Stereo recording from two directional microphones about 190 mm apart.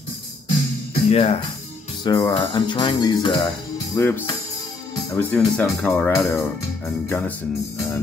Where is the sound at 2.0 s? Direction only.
20° left (ahead or behind).